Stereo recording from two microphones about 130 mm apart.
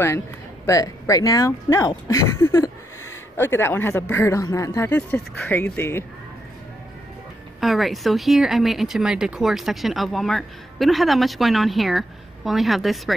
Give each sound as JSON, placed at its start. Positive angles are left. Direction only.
{"t": 0.7, "sound": "speech", "side_deg": 25}
{"t": 7.6, "sound": "speech", "side_deg": 0}